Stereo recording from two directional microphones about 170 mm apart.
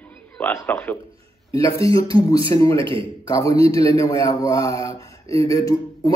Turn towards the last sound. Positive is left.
turn(degrees=20)  # may be behind; listen again after turning